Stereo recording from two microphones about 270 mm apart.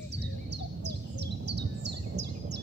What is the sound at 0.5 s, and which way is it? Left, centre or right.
Bird, right.